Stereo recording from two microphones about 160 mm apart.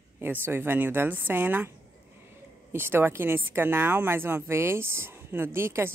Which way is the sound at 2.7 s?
15° right (ahead or behind).